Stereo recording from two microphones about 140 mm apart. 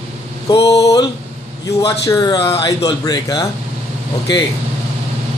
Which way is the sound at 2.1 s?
30° left (ahead or behind).